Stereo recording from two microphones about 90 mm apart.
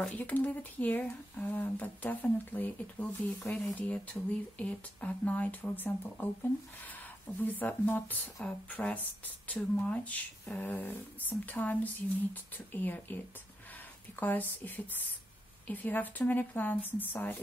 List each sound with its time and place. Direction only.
0.0 s speech: 15° left (ahead or behind)